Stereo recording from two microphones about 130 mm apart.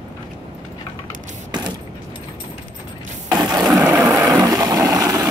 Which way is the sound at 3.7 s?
25° right (ahead or behind).